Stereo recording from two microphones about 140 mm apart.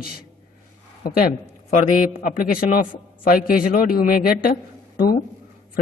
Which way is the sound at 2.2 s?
90° left.